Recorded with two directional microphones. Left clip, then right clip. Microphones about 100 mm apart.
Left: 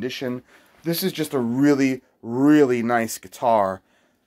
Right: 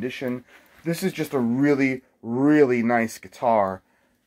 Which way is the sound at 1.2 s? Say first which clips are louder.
Left 2 dB; centre (ahead or behind).